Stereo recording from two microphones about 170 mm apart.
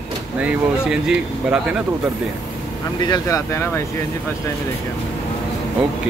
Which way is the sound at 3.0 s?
20° left (ahead or behind).